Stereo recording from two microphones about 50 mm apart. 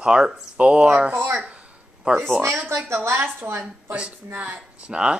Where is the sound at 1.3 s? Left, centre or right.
Right.